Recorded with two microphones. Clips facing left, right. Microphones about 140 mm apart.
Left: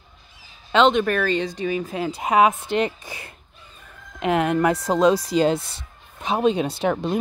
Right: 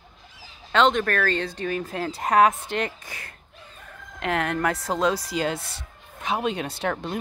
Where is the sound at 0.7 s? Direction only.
20° left (ahead or behind).